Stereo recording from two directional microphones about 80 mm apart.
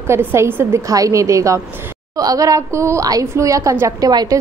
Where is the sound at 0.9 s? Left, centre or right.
Right.